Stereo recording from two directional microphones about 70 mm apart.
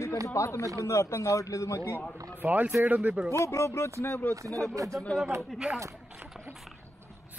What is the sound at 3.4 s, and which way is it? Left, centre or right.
Speech, left.